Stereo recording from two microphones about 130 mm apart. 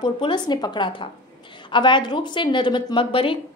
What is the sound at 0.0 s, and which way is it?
A woman's voice, 35° left (ahead or behind).